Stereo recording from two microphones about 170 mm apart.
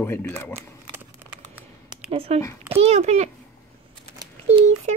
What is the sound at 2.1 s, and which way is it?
A child's voice, 35° right (ahead or behind).